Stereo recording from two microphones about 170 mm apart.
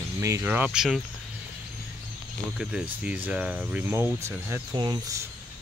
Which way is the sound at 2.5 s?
5° right (ahead or behind).